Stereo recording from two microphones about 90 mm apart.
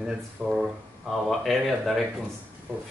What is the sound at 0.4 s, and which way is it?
Speech, centre (ahead or behind).